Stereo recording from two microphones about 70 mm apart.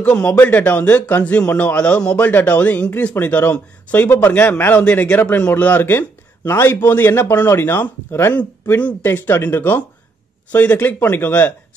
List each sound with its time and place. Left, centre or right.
0.0 s a man's voice: centre; by 8.4 s left
8.4 s a man's voice: centre